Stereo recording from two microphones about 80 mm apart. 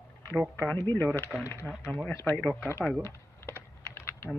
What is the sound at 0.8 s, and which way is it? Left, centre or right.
Speech, left.